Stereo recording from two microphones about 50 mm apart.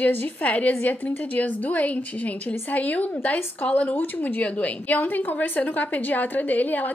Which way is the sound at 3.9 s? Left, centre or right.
Left.